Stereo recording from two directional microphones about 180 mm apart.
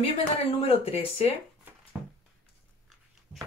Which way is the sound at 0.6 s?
35° left (ahead or behind).